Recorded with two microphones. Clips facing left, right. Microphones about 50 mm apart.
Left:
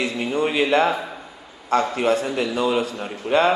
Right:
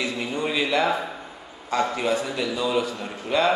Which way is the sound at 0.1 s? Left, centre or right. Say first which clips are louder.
Left 4 dB; left.